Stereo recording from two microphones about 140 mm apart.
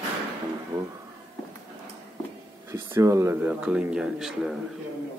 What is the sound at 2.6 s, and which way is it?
Speech, 15° right (ahead or behind).